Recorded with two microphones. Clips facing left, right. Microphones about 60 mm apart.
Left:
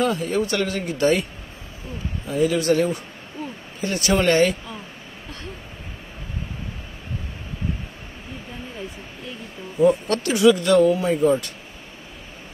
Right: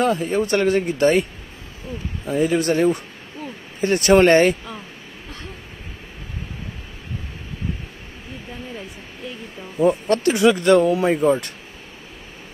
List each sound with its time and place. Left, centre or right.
0.0 s speech: right
2.2 s speech: right
9.8 s speech: right
10.9 s speech: right